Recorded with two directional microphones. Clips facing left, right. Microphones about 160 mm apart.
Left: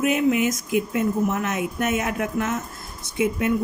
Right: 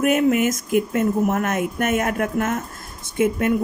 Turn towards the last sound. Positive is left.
turn(degrees=-50)  # may be behind; listen again after turning